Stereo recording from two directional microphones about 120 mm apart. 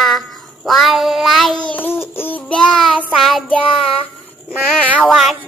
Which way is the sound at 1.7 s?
15° left (ahead or behind).